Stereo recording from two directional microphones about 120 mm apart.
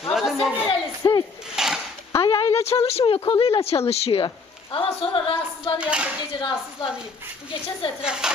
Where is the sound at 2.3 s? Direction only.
25° left (ahead or behind).